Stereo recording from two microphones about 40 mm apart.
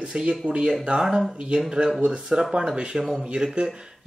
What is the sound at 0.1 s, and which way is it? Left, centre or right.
Speech, right.